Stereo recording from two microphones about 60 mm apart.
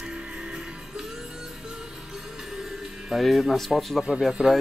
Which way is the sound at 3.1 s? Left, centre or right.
Centre.